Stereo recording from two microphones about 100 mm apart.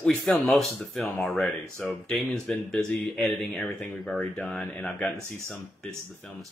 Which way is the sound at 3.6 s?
20° left (ahead or behind).